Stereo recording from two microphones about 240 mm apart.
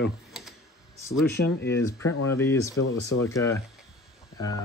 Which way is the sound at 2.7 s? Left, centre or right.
Left.